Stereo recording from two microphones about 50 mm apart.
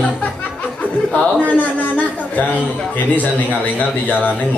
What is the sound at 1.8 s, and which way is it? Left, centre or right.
A man's voice, left.